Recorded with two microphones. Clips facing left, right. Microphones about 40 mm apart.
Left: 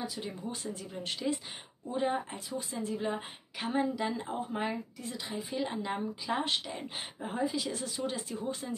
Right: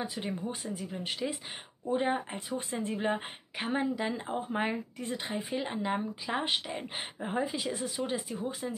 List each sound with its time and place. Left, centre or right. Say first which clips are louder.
0.0 s speech: right 3 dB; right
0.5 s speech: right 2 dB; centre
1.9 s speech: right 2 dB; right
3.5 s a woman's voice: even; right
5.5 s a woman's voice: right 1 dB; right